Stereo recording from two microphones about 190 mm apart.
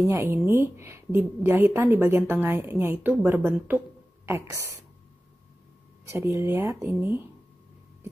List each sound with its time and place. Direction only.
0.0 s a woman's voice: 15° right (ahead or behind)
6.0 s a woman's voice: 15° right (ahead or behind)